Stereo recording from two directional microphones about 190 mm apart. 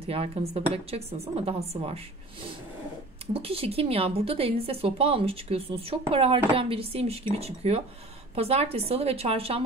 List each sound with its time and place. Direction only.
0.0 s a woman's voice: 30° right (ahead or behind)
3.3 s a woman's voice: 30° right (ahead or behind)